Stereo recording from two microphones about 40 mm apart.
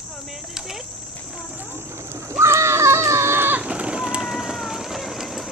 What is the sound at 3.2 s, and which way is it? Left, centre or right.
Livestock, right.